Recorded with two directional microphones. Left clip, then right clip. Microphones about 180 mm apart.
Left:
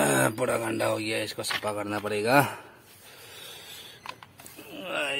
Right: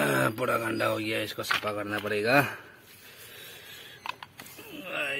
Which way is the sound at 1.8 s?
10° left (ahead or behind).